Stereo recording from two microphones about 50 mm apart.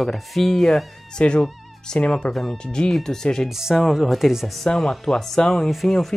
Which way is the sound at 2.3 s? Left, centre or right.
Centre.